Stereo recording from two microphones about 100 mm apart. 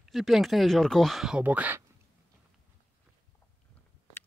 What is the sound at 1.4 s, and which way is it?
Speech, 15° right (ahead or behind).